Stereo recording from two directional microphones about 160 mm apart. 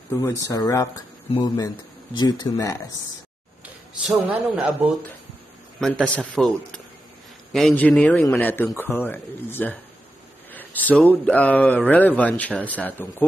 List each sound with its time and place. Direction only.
0.1 s speech: 20° left (ahead or behind)
1.3 s speech: 35° left (ahead or behind)
2.1 s speech: 25° left (ahead or behind)
4.1 s a man's voice: 10° right (ahead or behind)
5.8 s a man's voice: 5° left (ahead or behind)
7.5 s speech: 5° left (ahead or behind)